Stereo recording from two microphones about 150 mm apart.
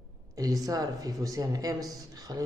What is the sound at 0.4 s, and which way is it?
Speech, 25° right (ahead or behind).